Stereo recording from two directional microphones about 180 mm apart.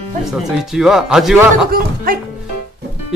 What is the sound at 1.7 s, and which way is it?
Speech, 55° right (ahead or behind).